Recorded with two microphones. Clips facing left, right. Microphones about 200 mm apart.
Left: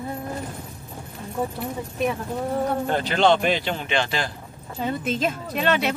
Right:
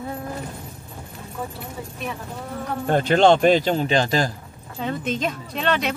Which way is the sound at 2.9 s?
45° right (ahead or behind).